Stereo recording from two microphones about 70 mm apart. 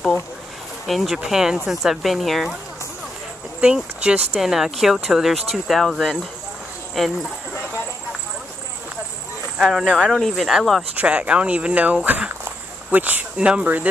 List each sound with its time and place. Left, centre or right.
0.8 s speech: centre
3.6 s speech: centre
4.3 s speech: centre
9.6 s speech: centre
11.0 s speech: centre